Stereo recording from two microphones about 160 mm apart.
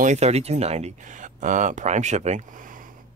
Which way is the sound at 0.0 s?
45° right (ahead or behind).